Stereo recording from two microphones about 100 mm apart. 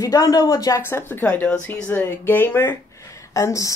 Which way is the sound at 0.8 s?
25° left (ahead or behind).